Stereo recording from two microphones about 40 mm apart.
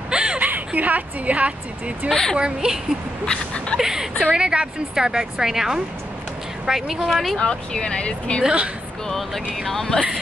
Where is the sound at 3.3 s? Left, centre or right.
Left.